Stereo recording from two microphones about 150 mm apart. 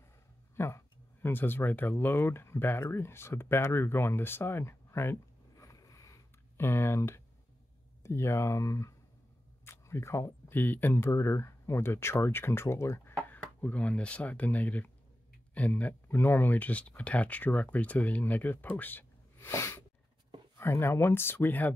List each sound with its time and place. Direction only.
0.6 s speech: 15° left (ahead or behind)